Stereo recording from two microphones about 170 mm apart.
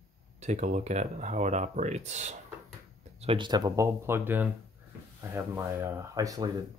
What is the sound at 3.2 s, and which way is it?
Speech, 30° right (ahead or behind).